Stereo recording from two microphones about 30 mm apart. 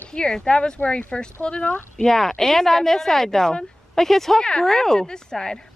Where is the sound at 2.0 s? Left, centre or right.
Centre.